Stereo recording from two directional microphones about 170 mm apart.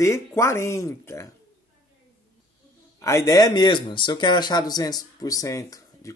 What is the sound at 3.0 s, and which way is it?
Speech, 20° left (ahead or behind).